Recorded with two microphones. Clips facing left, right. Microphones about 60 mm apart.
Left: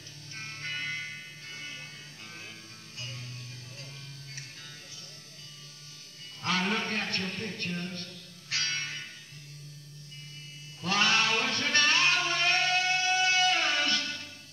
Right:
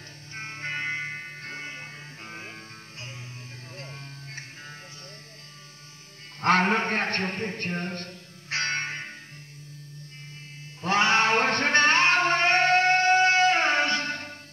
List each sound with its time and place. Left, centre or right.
0.4 s music: right
6.4 s a man's voice: right
10.8 s music: right